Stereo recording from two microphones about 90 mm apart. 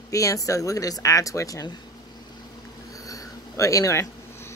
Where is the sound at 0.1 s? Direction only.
40° left (ahead or behind).